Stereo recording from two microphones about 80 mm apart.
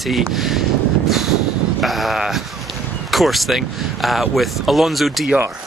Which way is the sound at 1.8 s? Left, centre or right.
Centre.